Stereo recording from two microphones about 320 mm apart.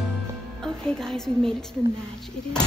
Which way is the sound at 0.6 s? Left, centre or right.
Centre.